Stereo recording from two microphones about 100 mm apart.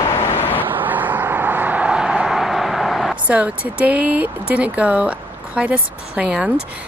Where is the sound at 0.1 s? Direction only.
25° left (ahead or behind).